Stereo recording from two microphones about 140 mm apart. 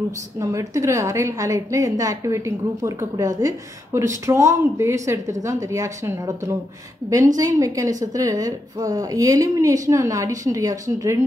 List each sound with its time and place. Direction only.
0.4 s a woman's voice: 20° right (ahead or behind)